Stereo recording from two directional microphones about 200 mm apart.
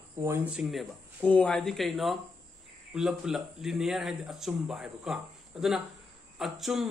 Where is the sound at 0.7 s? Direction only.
5° left (ahead or behind).